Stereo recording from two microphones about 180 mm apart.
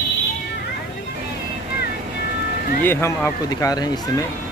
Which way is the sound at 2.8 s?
15° left (ahead or behind).